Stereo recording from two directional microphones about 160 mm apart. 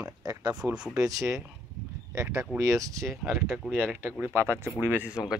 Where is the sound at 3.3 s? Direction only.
15° right (ahead or behind).